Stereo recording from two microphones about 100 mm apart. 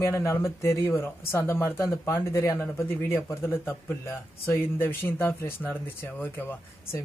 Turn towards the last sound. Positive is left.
turn(degrees=20)  # may be behind; listen again after turning